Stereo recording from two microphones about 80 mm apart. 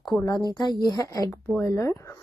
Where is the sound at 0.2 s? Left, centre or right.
Left.